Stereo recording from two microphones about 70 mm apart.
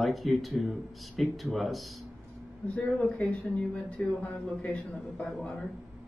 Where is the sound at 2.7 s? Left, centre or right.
Centre.